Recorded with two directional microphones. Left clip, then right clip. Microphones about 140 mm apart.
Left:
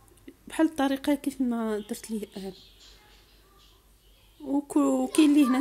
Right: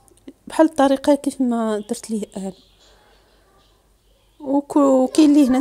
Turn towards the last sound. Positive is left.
turn(degrees=-40)  # may be behind; listen again after turning